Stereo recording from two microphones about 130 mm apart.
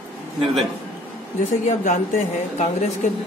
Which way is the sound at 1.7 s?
75° left (ahead or behind).